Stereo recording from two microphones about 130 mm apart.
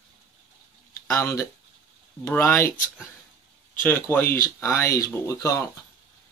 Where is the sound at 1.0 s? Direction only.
20° left (ahead or behind).